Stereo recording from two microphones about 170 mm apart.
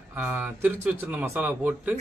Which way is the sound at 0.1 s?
15° right (ahead or behind).